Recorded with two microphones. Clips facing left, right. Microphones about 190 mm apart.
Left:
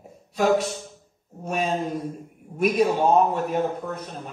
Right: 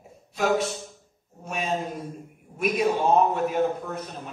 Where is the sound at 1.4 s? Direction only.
40° left (ahead or behind).